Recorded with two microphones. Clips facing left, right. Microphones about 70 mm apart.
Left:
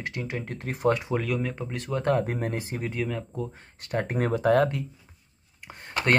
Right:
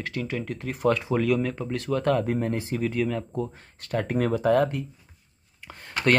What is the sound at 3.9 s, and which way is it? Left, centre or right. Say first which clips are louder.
Speech: right 2 dB; left.